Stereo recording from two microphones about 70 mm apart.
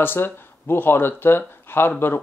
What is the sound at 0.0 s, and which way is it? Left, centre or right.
Speech, left.